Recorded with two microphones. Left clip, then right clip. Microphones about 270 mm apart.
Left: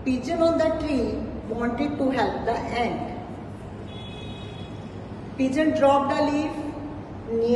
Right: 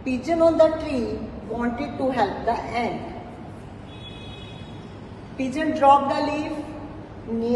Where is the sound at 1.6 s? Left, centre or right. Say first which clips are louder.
Left 1 dB; centre.